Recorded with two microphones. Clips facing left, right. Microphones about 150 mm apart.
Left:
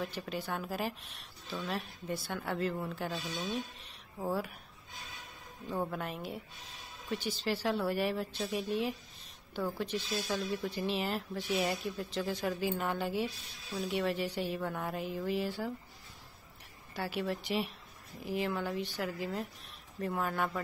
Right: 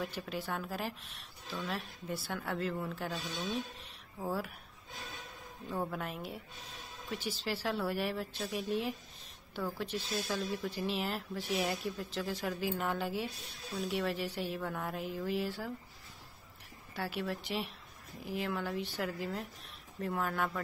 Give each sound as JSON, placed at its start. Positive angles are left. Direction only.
{"t": 0.0, "sound": "speech", "side_deg": 0}
{"t": 5.7, "sound": "speech", "side_deg": 0}
{"t": 16.9, "sound": "speech", "side_deg": 0}